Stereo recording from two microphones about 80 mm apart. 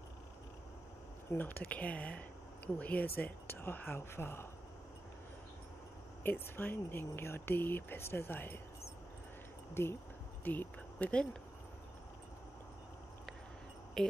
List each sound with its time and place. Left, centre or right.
1.3 s speech: left
6.2 s speech: left
9.8 s speech: left
10.4 s a sound: left
14.0 s speech: centre